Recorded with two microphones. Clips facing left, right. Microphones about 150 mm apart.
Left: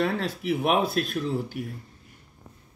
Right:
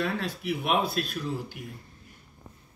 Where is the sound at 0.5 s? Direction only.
40° left (ahead or behind).